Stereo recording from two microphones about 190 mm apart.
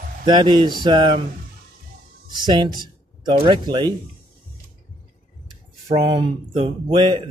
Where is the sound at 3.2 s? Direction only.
25° right (ahead or behind).